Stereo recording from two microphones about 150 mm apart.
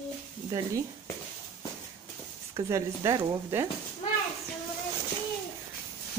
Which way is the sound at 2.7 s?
20° right (ahead or behind).